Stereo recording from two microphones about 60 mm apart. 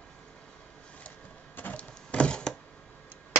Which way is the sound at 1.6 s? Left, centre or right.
Left.